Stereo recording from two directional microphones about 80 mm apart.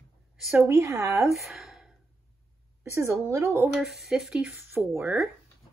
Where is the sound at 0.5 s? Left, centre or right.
Right.